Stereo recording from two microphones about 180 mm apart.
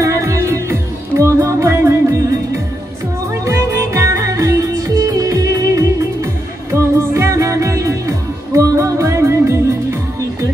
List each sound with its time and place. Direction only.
0.0 s music: 15° right (ahead or behind)